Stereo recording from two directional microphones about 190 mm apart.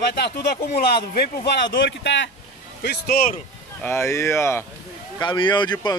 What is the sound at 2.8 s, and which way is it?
Speech, 55° left (ahead or behind).